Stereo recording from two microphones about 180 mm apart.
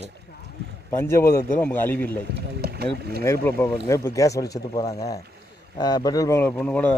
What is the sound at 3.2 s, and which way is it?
Speech, 15° left (ahead or behind).